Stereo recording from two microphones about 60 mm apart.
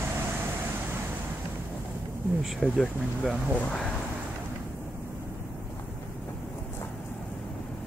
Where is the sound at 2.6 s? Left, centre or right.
Centre.